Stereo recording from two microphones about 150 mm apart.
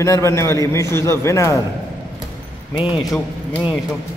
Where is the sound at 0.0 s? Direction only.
20° left (ahead or behind).